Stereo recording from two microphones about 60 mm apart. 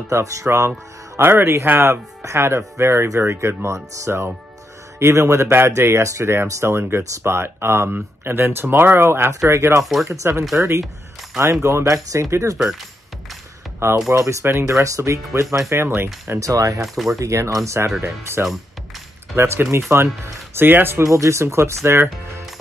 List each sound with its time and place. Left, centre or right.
0.1 s speech: right
0.5 s speech: right
9.5 s speech: right
13.8 s speech: right
15.7 s speech: right
16.3 s speech: right
16.8 s speech: centre
17.2 s speech: right
17.6 s speech: right
21.0 s speech: right